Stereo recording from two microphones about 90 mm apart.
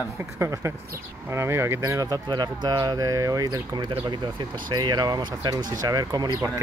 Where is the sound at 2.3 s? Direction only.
55° right (ahead or behind).